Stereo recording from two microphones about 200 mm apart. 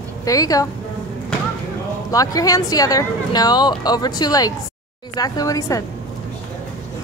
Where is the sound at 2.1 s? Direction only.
15° left (ahead or behind).